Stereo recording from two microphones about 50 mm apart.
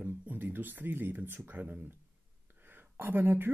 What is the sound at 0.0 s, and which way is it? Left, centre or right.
Speech, right.